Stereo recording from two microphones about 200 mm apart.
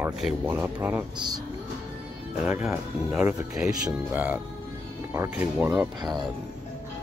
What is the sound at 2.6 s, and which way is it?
Speech, 5° right (ahead or behind).